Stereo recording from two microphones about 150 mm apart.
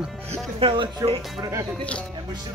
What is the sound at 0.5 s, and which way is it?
Speech, 35° right (ahead or behind).